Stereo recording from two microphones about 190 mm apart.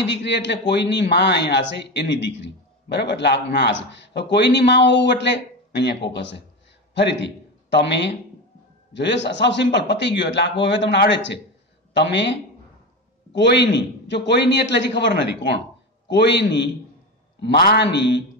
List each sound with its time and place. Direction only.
0.0 s a man's voice: 65° left (ahead or behind)